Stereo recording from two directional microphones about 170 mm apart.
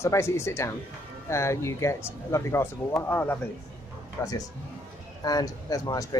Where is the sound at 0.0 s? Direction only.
15° left (ahead or behind).